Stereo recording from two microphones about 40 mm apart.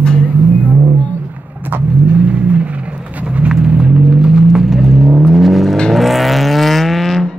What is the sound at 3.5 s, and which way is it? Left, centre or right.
Vehicle, centre.